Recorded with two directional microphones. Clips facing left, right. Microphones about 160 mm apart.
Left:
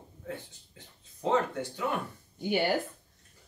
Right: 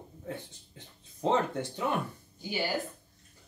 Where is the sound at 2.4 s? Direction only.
60° left (ahead or behind).